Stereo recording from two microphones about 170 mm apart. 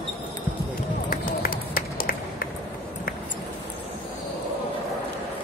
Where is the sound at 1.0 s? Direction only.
55° left (ahead or behind).